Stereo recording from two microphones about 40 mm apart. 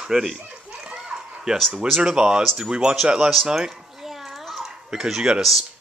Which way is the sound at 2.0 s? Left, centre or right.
Centre.